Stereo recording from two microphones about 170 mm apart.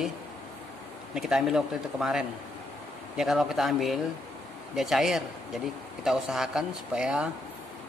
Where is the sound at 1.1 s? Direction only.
Centre (ahead or behind).